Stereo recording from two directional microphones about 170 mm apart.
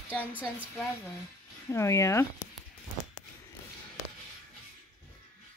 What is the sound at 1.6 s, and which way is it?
Speech, 15° left (ahead or behind).